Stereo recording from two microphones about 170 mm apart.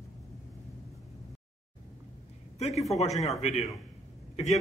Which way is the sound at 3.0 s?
40° left (ahead or behind).